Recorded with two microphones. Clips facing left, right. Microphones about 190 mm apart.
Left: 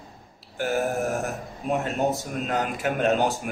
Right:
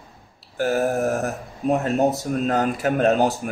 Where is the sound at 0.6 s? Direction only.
40° right (ahead or behind).